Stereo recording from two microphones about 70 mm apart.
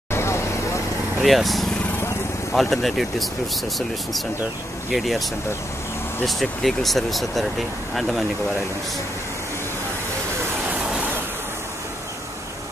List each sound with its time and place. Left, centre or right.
0.1 s vehicle: left
1.2 s speech: centre
4.9 s speech: centre
6.2 s speech: centre